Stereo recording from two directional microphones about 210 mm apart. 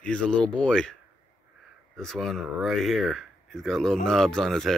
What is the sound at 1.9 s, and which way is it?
Speech, centre (ahead or behind).